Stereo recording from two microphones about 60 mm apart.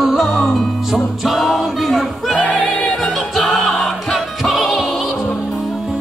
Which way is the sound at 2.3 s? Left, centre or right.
Left.